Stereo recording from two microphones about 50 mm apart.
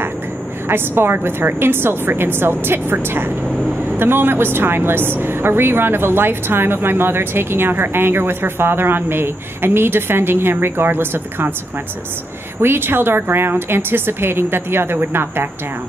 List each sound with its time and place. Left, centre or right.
0.7 s a woman's voice: right
12.5 s a woman's voice: right